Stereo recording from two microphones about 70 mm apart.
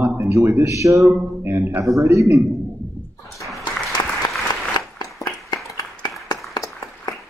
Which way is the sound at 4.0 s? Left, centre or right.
Left.